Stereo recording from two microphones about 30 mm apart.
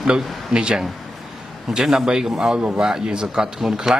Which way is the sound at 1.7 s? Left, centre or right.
Centre.